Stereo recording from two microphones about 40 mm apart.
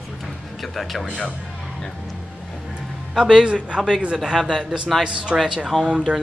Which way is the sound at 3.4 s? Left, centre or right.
Right.